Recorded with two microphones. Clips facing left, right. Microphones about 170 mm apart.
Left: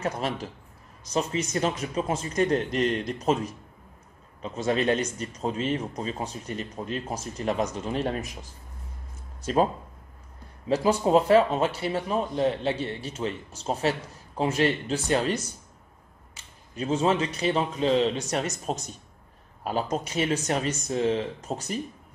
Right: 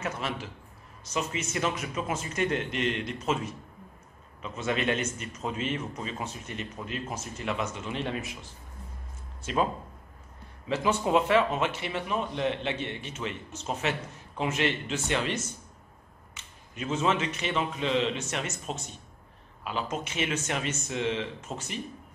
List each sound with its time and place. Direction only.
0.0 s speech: 40° left (ahead or behind)
10.7 s speech: 35° left (ahead or behind)